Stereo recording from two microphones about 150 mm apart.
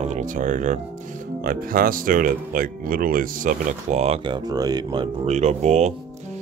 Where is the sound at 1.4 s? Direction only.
75° right (ahead or behind).